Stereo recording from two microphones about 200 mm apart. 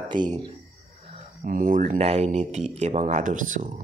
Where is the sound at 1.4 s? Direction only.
40° right (ahead or behind).